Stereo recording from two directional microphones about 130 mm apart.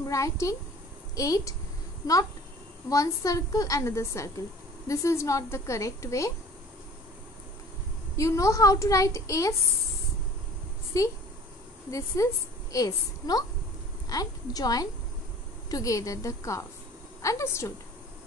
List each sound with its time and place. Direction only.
0.0 s a woman's voice: 25° left (ahead or behind)
2.9 s a woman's voice: 25° left (ahead or behind)
8.2 s a woman's voice: 25° left (ahead or behind)
10.9 s a woman's voice: 25° left (ahead or behind)
12.2 s a woman's voice: 25° left (ahead or behind)